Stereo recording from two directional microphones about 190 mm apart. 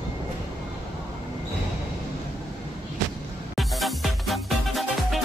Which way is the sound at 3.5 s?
Centre (ahead or behind).